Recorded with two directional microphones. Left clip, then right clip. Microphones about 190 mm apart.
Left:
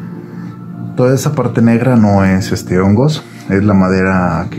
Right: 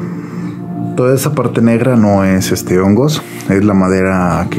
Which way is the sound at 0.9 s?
20° right (ahead or behind).